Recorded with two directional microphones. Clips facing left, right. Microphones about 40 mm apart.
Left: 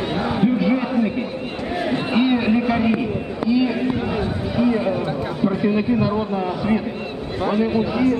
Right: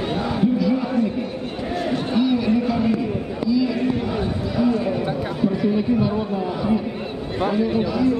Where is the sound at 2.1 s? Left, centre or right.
Left.